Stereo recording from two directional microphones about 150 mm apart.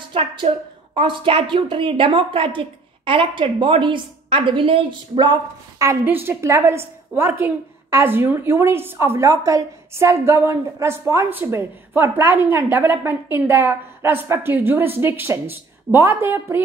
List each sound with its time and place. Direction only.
0.1 s a woman's voice: 40° right (ahead or behind)
5.8 s a woman's voice: 15° right (ahead or behind)